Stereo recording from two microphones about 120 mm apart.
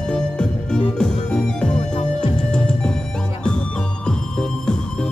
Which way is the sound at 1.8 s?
70° left (ahead or behind).